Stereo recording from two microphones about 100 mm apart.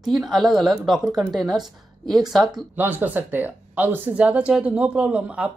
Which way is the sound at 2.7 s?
20° right (ahead or behind).